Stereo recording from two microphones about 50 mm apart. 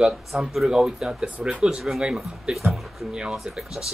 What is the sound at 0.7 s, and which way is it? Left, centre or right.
Speech, centre.